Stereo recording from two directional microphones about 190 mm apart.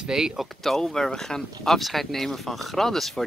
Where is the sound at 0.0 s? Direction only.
5° right (ahead or behind).